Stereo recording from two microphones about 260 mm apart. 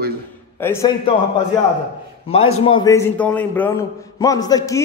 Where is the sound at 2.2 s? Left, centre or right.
Left.